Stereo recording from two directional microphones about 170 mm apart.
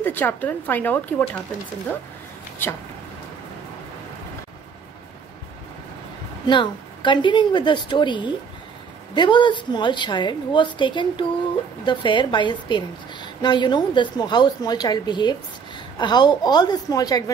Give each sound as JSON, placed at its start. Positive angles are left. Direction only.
{"t": 0.0, "sound": "speech", "side_deg": 10}
{"t": 2.6, "sound": "speech", "side_deg": 10}
{"t": 6.4, "sound": "a woman's voice", "side_deg": 25}